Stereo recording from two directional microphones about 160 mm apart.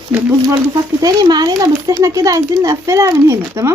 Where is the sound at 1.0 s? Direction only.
25° right (ahead or behind).